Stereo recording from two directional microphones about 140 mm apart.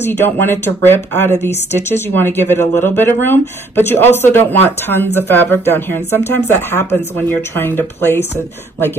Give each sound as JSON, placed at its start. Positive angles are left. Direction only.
{"t": 0.0, "sound": "speech", "side_deg": 15}